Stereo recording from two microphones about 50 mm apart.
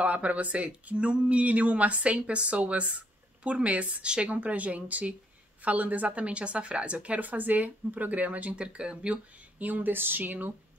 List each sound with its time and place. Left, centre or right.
0.0 s a woman's voice: right
9.7 s speech: right